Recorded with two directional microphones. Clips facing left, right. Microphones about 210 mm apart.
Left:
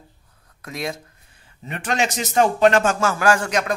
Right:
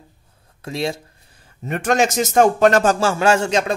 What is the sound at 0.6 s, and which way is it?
Speech, 30° right (ahead or behind).